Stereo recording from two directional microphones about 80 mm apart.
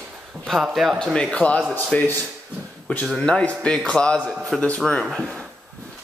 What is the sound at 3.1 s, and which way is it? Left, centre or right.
A man's voice, centre.